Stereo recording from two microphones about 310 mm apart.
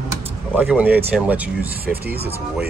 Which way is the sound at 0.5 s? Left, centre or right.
Centre.